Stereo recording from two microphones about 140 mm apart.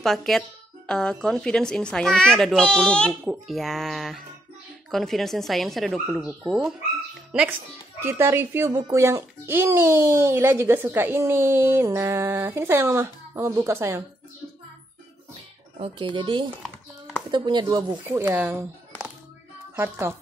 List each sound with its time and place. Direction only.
0.0 s a child's voice: centre (ahead or behind)
8.0 s a child's voice: 15° right (ahead or behind)
15.8 s speech: 35° right (ahead or behind)
18.0 s a child's voice: 15° right (ahead or behind)
19.7 s speech: 15° right (ahead or behind)